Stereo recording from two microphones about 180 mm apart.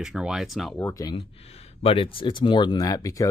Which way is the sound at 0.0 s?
5° right (ahead or behind).